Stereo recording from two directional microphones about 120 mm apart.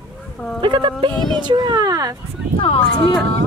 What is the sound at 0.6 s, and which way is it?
Speech, 40° right (ahead or behind).